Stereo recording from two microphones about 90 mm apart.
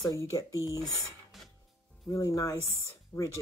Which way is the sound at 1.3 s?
Centre (ahead or behind).